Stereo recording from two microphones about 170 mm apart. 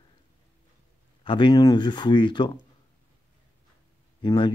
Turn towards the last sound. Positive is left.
turn(degrees=30)  # may be behind; listen again after turning